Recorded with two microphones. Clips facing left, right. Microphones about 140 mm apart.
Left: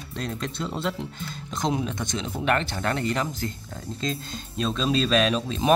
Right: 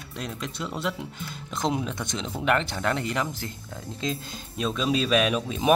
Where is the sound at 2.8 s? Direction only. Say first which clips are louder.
Left 1 dB; 10° right (ahead or behind).